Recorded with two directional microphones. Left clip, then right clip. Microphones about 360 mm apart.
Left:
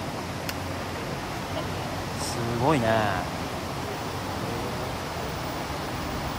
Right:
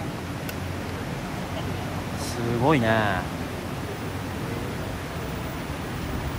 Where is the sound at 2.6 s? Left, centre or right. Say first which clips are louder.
Right 1 dB; centre.